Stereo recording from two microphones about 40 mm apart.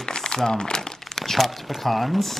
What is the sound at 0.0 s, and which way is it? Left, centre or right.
Crumpling, centre.